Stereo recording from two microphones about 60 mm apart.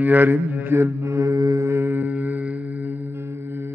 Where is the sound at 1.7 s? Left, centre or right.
Right.